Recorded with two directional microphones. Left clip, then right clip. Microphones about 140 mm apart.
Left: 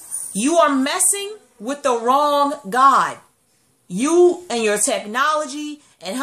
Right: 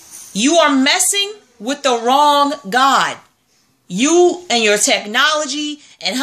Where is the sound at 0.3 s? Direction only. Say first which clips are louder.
Right 3 dB; 5° right (ahead or behind).